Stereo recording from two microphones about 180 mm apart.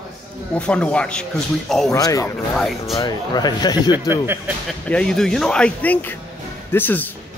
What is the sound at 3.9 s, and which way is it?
Speech, 10° right (ahead or behind).